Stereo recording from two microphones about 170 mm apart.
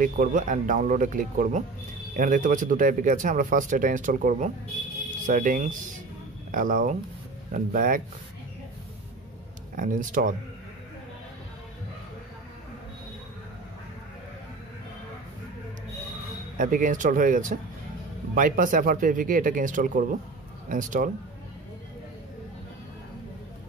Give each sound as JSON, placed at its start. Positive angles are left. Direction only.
{"t": 0.0, "sound": "a man's voice", "side_deg": -50}
{"t": 9.8, "sound": "a man's voice", "side_deg": -50}
{"t": 16.5, "sound": "a man's voice", "side_deg": -50}